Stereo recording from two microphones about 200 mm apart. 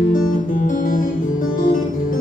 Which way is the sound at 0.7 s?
45° left (ahead or behind).